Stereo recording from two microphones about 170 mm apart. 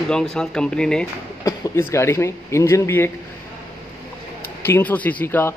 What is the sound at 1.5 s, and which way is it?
Speech, 20° left (ahead or behind).